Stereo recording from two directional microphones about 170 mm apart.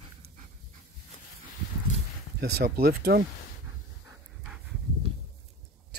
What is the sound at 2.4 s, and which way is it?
Speech, 65° right (ahead or behind).